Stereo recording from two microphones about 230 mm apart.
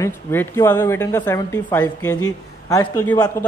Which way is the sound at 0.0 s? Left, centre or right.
Centre.